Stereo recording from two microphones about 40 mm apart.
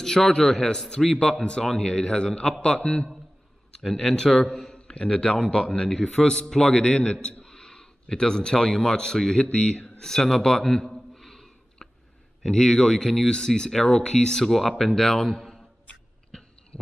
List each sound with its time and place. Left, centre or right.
0.0 s a man's voice: centre
3.8 s speech: centre
4.1 s a man's voice: centre
11.1 s gasp: centre
12.4 s speech: centre
16.3 s a sound: centre